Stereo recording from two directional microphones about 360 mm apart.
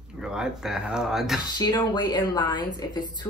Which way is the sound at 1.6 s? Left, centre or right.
Centre.